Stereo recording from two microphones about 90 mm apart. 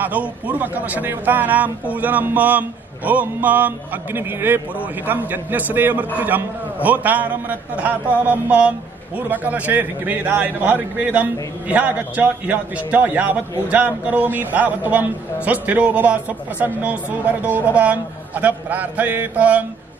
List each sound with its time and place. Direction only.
0.0 s a man's voice: 15° right (ahead or behind)